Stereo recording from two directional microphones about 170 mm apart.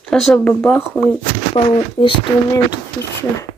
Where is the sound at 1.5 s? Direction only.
30° left (ahead or behind).